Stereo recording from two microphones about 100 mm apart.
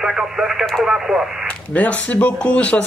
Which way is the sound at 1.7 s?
15° left (ahead or behind).